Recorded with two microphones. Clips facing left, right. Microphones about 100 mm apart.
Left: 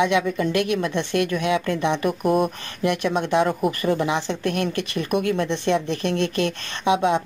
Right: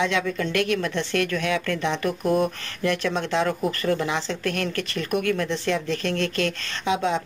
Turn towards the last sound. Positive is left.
turn(degrees=20)  # may be behind; listen again after turning